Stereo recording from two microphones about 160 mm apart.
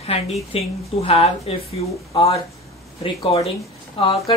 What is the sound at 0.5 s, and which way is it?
Speech, 40° left (ahead or behind).